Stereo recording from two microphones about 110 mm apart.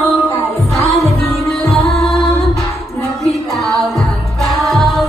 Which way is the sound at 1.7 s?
Centre (ahead or behind).